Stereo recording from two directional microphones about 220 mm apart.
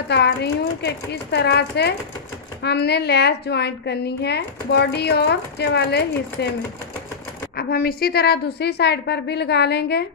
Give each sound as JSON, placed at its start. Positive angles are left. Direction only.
{"t": 0.1, "sound": "a woman's voice", "side_deg": 50}